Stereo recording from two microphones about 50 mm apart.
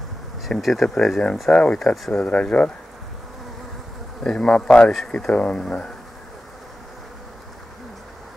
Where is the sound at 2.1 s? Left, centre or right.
Left.